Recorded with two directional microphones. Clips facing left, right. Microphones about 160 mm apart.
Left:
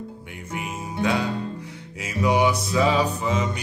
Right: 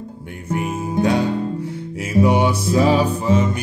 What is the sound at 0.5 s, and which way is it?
Music, 30° right (ahead or behind).